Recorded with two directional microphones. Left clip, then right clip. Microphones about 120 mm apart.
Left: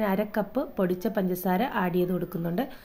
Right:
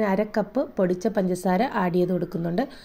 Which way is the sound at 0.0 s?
20° right (ahead or behind).